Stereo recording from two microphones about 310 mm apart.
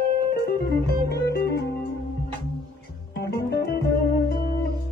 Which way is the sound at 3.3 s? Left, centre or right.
Left.